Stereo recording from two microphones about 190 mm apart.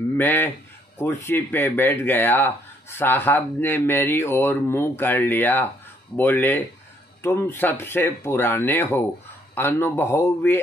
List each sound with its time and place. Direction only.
0.2 s speech: 10° left (ahead or behind)